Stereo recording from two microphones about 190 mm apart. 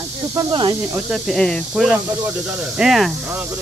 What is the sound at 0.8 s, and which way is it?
Speech, 5° right (ahead or behind).